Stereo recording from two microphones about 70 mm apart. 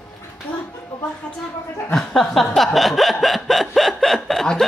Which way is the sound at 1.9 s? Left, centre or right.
Centre.